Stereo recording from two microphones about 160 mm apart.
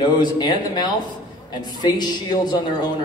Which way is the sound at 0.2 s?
25° left (ahead or behind).